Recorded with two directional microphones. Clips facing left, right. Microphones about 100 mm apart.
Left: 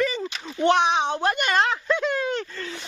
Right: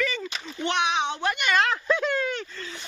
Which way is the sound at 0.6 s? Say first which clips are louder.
Left 6 dB; 40° left (ahead or behind).